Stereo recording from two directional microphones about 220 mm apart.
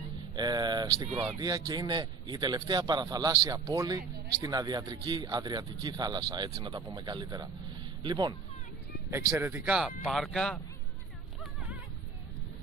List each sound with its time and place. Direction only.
0.4 s a man's voice: 20° right (ahead or behind); by 10.6 s 5° left (ahead or behind)